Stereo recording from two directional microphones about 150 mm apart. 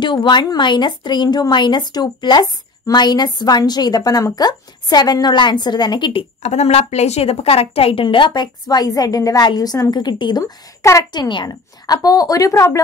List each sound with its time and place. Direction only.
0.0 s a woman's voice: 30° left (ahead or behind)
6.4 s a woman's voice: 45° left (ahead or behind); by 10.4 s 30° left (ahead or behind)
10.4 s a woman's voice: 20° left (ahead or behind)